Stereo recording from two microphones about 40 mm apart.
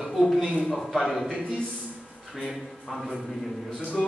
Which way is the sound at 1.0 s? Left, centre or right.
Centre.